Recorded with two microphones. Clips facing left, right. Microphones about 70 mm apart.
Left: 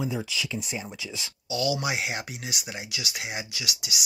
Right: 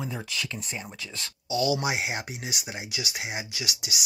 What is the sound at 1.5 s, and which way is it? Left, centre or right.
Speech, right.